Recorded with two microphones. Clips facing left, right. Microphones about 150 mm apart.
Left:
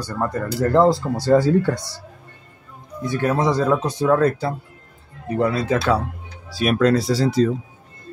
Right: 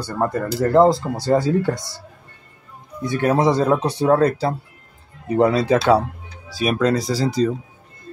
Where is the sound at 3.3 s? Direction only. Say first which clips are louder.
Right 2 dB; 30° right (ahead or behind).